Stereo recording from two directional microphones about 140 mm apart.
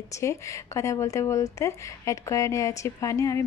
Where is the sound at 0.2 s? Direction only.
20° left (ahead or behind).